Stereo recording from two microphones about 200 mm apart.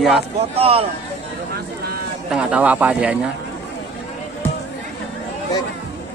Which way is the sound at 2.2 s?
5° right (ahead or behind).